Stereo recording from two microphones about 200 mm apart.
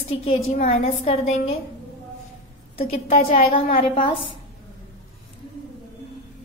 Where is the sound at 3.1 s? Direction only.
30° left (ahead or behind).